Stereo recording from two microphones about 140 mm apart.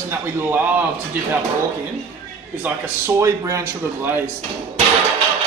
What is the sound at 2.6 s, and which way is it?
Speech, 20° right (ahead or behind).